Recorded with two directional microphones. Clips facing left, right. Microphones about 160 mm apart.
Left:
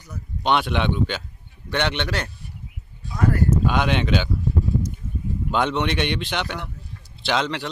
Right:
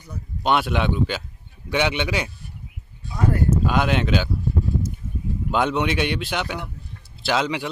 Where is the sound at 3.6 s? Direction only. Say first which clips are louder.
Even; 5° right (ahead or behind).